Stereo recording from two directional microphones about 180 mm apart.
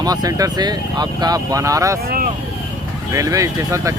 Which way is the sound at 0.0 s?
20° right (ahead or behind).